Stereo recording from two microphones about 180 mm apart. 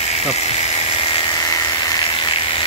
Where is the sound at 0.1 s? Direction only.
35° left (ahead or behind).